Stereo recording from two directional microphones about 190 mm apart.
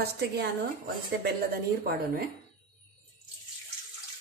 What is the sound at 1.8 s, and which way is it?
Speech, 50° right (ahead or behind).